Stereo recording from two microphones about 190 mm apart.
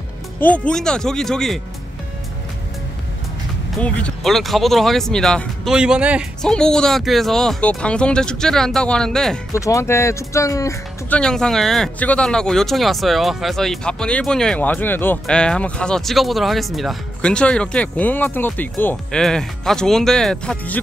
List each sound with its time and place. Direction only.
0.4 s speech: 5° left (ahead or behind)
3.8 s speech: 5° left (ahead or behind)
9.5 s speech: 15° left (ahead or behind)
11.1 s speech: 5° left (ahead or behind)